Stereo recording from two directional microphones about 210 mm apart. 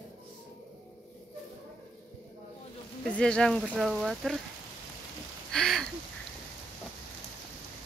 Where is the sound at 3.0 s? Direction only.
5° left (ahead or behind).